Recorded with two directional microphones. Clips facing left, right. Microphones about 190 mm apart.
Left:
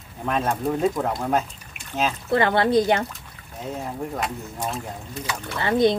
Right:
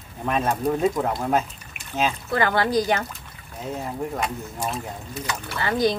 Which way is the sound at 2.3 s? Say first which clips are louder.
Left 3 dB; 25° left (ahead or behind).